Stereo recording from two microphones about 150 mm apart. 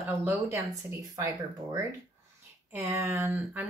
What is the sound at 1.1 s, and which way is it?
Speech, 25° right (ahead or behind).